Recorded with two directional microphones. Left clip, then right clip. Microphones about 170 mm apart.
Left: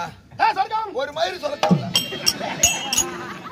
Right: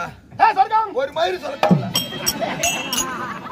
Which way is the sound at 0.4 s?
10° left (ahead or behind).